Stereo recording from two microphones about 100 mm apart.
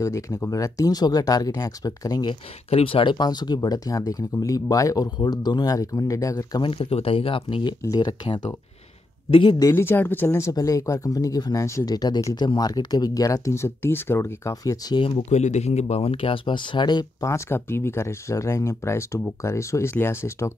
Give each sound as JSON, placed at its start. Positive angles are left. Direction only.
{"t": 0.0, "sound": "speech", "side_deg": 30}
{"t": 2.7, "sound": "speech", "side_deg": 65}
{"t": 3.2, "sound": "speech", "side_deg": 45}
{"t": 6.6, "sound": "speech", "side_deg": 70}
{"t": 7.8, "sound": "speech", "side_deg": 40}
{"t": 9.4, "sound": "speech", "side_deg": 50}
{"t": 9.7, "sound": "speech", "side_deg": 25}
{"t": 11.9, "sound": "speech", "side_deg": 40}
{"t": 15.0, "sound": "speech", "side_deg": 75}
{"t": 17.2, "sound": "speech", "side_deg": 25}